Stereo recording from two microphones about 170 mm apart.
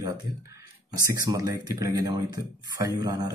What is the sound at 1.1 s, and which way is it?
Speech, 25° right (ahead or behind).